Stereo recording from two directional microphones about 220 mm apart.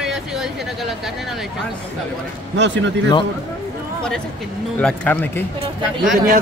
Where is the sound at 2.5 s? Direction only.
55° right (ahead or behind).